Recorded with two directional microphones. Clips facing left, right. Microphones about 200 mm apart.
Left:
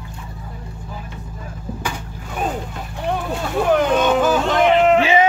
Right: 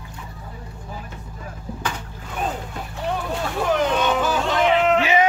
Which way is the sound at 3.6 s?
50° left (ahead or behind).